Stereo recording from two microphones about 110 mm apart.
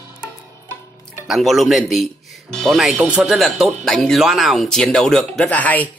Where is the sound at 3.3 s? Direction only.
Centre (ahead or behind).